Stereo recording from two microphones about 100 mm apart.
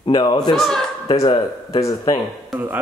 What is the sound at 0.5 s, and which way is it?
Speech, 5° left (ahead or behind).